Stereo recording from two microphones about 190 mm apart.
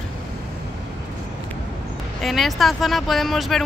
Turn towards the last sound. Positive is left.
turn(degrees=0)  # may be behind; listen again after turning